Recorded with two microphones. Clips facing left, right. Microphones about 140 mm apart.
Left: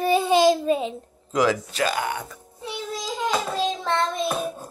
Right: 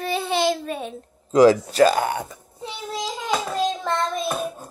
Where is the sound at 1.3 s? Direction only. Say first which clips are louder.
Right 8 dB; 35° right (ahead or behind).